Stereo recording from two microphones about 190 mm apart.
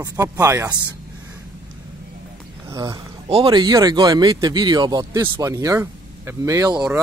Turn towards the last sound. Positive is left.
turn(degrees=-20)  # may be behind; listen again after turning